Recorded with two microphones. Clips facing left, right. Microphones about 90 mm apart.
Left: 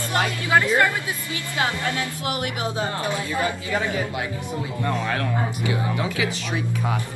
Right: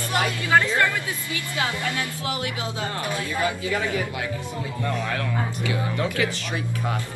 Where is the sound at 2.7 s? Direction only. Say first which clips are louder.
Left 3 dB; 20° left (ahead or behind).